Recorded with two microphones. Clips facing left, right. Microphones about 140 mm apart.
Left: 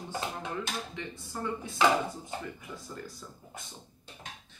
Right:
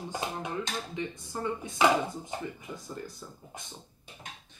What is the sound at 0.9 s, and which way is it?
Speech, 20° right (ahead or behind).